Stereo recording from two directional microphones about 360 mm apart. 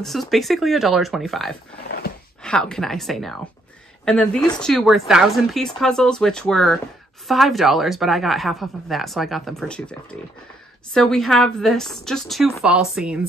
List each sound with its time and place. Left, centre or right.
0.0 s a woman's voice: centre